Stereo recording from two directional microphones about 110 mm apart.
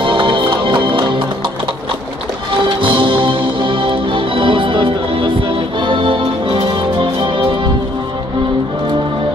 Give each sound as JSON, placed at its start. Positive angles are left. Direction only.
{"t": 0.0, "sound": "music", "side_deg": -50}
{"t": 2.8, "sound": "music", "side_deg": -50}